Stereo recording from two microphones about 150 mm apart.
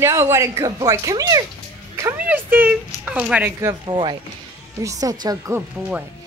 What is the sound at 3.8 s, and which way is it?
Speech, 30° right (ahead or behind).